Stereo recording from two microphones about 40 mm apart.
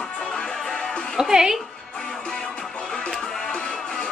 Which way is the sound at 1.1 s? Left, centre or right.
Centre.